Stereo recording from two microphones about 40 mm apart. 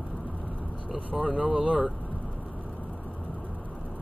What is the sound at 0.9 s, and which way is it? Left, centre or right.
Speech, right.